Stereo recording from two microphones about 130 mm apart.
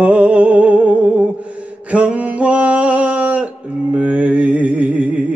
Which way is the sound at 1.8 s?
10° right (ahead or behind).